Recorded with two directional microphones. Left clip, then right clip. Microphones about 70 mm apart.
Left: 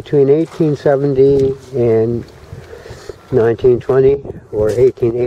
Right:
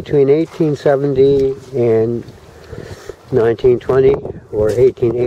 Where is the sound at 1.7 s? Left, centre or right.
Right.